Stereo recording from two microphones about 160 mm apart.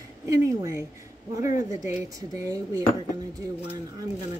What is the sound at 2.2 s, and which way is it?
Speech, 20° right (ahead or behind).